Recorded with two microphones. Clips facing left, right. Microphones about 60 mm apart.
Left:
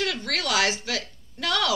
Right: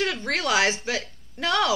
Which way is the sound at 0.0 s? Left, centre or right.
Right.